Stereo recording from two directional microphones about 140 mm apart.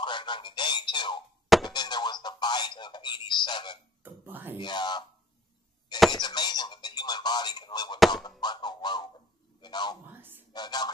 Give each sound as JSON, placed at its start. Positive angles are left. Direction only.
{"t": 0.0, "sound": "speech", "side_deg": 35}
{"t": 4.0, "sound": "hiccup", "side_deg": -15}
{"t": 4.6, "sound": "speech", "side_deg": 30}
{"t": 6.1, "sound": "telephone", "side_deg": 30}
{"t": 8.4, "sound": "music", "side_deg": 30}
{"t": 9.6, "sound": "a sound", "side_deg": 30}
{"t": 10.5, "sound": "speech", "side_deg": 30}